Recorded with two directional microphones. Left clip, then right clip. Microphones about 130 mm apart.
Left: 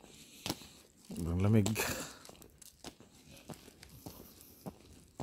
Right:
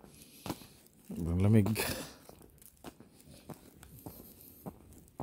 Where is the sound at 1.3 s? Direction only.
15° right (ahead or behind).